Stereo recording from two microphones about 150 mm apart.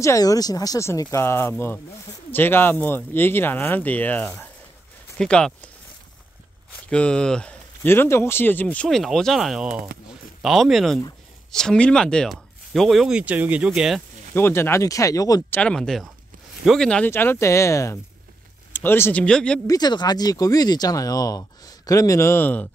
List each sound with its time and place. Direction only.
0.0 s speech: 20° left (ahead or behind); by 5.7 s 5° left (ahead or behind)
6.9 s speech: 5° left (ahead or behind)
14.3 s speech: 15° left (ahead or behind)
15.5 s speech: 5° left (ahead or behind)
19.7 s speech: 30° left (ahead or behind); by 22.7 s 10° left (ahead or behind)